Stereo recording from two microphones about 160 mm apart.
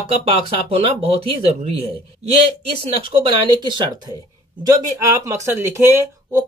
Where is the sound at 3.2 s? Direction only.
30° right (ahead or behind).